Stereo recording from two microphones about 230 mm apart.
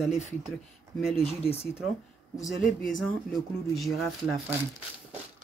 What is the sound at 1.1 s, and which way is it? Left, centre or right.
Speech, left.